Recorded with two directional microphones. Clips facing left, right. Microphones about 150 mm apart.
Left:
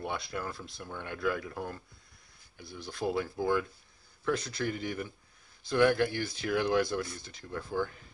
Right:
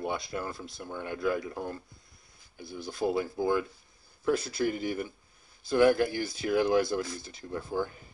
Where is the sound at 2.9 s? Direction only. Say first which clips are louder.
Right 3 dB; 5° right (ahead or behind).